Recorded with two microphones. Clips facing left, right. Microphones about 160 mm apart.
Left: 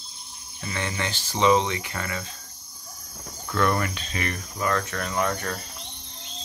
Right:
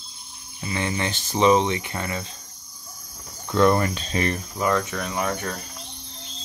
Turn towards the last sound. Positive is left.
turn(degrees=-10)  # may be behind; listen again after turning